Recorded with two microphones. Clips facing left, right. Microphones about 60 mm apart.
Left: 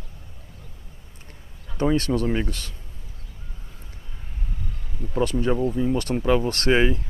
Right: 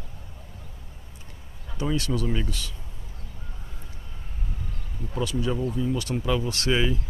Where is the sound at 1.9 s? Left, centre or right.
Left.